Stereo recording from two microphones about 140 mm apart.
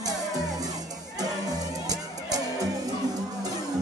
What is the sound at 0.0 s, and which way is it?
Music, 25° right (ahead or behind).